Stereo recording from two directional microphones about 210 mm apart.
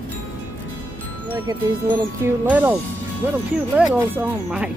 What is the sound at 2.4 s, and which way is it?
Speech, 5° right (ahead or behind).